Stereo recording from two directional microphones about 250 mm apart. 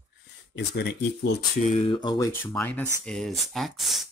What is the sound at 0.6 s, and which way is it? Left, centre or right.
Speech, left.